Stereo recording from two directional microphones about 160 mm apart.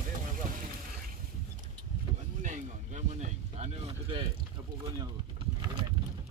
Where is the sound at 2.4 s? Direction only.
50° right (ahead or behind).